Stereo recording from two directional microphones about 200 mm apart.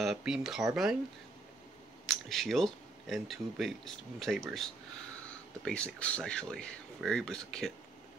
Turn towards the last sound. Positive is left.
turn(degrees=0)  # may be behind; listen again after turning